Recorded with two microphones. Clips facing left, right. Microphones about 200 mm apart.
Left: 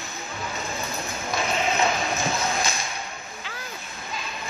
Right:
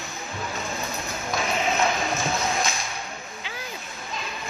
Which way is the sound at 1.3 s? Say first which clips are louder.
Even; centre (ahead or behind).